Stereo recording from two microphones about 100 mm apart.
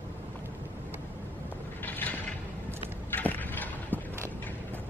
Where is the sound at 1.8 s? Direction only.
15° left (ahead or behind).